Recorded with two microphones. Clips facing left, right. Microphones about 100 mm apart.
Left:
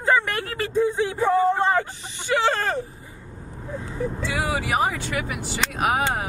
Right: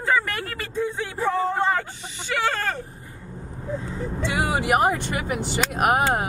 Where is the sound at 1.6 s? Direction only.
20° left (ahead or behind).